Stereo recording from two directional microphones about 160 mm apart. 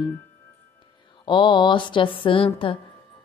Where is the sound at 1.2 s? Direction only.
30° left (ahead or behind).